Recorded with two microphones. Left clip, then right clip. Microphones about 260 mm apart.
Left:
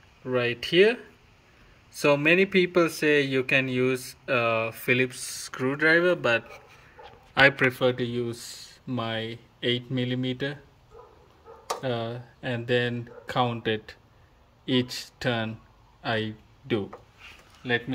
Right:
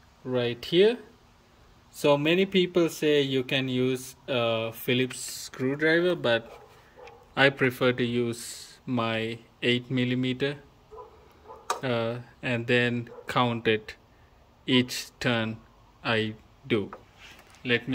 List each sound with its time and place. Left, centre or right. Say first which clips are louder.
0.4 s speech: left 2 dB; right
2.0 s speech: left 2 dB; centre
11.8 s speech: right 2 dB; centre